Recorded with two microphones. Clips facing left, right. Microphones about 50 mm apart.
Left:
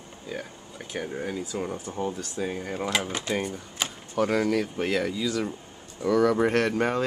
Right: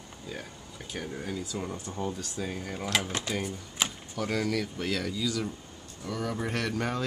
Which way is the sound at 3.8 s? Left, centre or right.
Centre.